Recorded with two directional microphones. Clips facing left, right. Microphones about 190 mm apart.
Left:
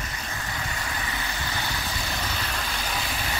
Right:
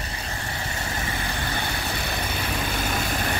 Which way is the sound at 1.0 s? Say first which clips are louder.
Right 3 dB; 55° right (ahead or behind).